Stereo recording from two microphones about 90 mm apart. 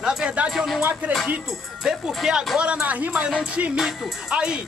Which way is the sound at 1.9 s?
10° right (ahead or behind).